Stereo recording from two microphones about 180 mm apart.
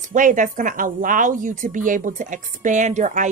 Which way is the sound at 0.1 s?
45° right (ahead or behind).